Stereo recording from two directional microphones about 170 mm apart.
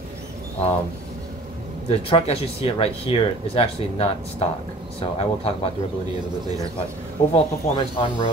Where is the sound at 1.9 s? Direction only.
35° left (ahead or behind).